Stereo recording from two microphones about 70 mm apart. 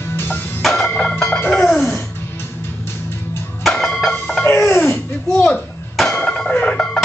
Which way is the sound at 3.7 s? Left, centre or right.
Centre.